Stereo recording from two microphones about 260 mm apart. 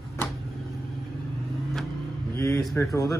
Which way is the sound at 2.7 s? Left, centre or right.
Centre.